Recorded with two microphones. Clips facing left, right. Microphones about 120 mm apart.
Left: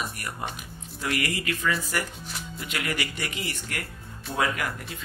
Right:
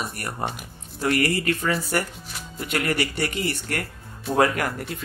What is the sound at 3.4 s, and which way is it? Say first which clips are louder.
Speech: right 7 dB; 55° right (ahead or behind).